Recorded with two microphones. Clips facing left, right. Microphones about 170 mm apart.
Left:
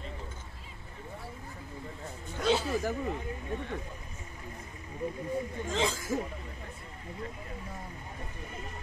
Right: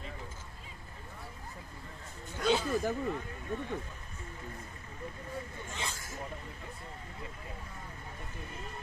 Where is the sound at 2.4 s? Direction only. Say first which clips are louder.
Left 1 dB; 5° left (ahead or behind).